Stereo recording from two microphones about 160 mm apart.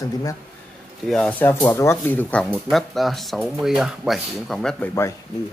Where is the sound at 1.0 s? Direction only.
5° left (ahead or behind).